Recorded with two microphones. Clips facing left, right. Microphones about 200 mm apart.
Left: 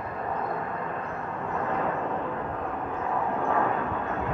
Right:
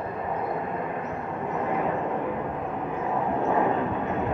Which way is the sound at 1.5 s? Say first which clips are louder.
Right 2 dB; 15° right (ahead or behind).